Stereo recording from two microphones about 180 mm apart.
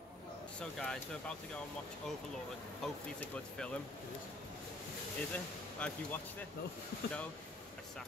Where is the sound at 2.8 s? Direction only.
5° left (ahead or behind).